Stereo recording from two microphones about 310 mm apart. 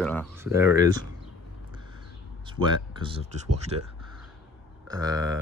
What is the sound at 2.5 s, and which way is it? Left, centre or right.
Speech, centre.